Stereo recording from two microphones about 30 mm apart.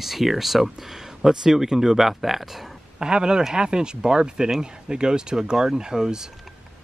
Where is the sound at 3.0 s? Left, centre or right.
Right.